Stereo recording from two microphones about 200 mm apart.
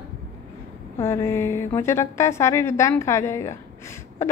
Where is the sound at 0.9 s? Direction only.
10° left (ahead or behind).